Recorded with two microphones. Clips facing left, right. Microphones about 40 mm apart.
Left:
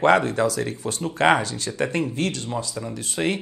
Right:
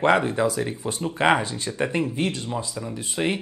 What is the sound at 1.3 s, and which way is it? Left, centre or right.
Speech, right.